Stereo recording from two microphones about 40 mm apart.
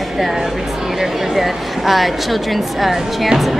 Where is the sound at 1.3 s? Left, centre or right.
Centre.